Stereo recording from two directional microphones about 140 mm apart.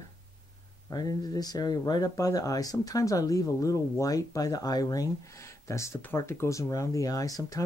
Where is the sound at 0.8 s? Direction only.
25° left (ahead or behind).